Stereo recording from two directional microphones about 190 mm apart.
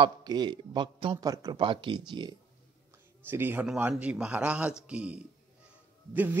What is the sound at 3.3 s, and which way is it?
A man's voice, 10° right (ahead or behind).